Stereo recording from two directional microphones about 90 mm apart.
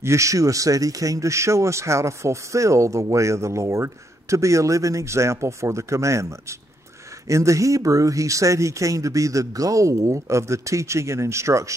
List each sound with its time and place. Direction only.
0.0 s speech: 35° right (ahead or behind)
7.2 s speech: 35° right (ahead or behind)